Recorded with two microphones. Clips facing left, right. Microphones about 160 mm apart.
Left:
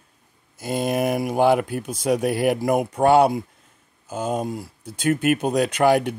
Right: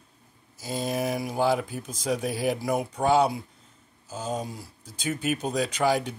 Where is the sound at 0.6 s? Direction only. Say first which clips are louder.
Left 6 dB; 65° left (ahead or behind).